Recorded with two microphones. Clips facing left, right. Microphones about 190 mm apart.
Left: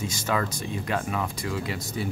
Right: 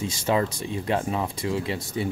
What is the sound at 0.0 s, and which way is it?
Speech, 30° right (ahead or behind).